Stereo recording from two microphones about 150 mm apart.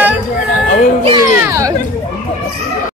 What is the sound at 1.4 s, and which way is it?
Speech, 20° right (ahead or behind).